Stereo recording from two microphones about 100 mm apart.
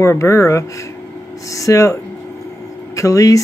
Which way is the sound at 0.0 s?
30° left (ahead or behind).